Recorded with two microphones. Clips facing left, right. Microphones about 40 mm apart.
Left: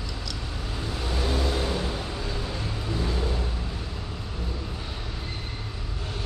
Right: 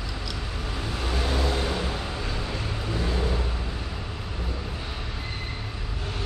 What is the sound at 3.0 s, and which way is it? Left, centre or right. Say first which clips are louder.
Vehicle: right 2 dB; centre.